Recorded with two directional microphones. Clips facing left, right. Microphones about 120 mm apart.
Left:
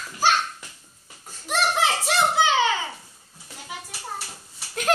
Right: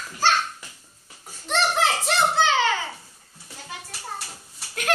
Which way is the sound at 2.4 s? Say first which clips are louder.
Even; 15° left (ahead or behind).